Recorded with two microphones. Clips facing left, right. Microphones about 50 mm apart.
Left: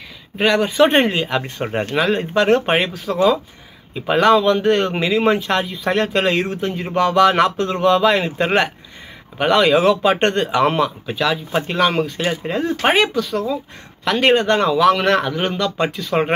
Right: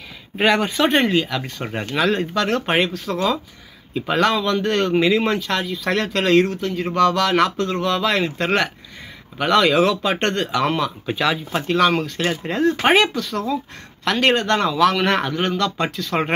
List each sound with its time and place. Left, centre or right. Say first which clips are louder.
0.4 s speech: left 3 dB; centre
0.9 s speech: left 2 dB; left; by 2.2 s centre
2.3 s speech: left 6 dB; left
2.7 s speech: left 1 dB; centre
6.5 s speech: left 1 dB; left
11.1 s speech: left 1 dB; centre
11.5 s speech: even; centre